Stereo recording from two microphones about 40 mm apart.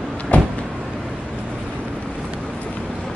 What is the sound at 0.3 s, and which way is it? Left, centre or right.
Vehicle, left.